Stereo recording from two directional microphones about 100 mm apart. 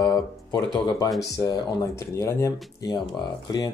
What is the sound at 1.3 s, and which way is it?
Speech, 35° left (ahead or behind).